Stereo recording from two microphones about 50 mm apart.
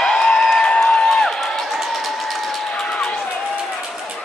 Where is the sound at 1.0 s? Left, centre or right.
Centre.